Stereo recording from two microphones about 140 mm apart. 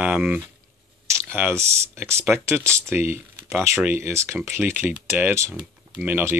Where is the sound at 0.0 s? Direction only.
10° right (ahead or behind).